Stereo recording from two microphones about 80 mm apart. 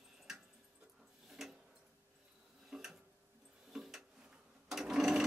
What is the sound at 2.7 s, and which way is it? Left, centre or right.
Tick-tock, centre.